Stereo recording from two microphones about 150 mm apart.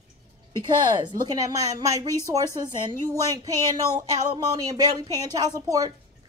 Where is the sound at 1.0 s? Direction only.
30° right (ahead or behind).